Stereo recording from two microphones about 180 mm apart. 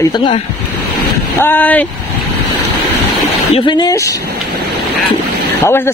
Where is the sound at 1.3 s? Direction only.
10° left (ahead or behind).